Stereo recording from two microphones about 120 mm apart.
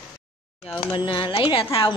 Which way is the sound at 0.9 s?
40° left (ahead or behind).